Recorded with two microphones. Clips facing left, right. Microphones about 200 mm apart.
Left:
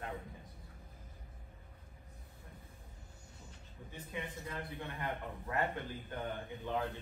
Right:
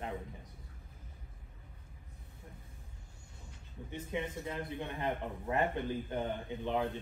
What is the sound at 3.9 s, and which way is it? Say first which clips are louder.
A man's voice: right 6 dB; 20° right (ahead or behind).